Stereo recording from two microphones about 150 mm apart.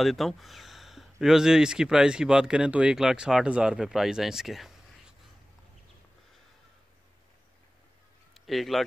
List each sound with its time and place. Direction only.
0.0 s speech: centre (ahead or behind)
8.5 s speech: centre (ahead or behind)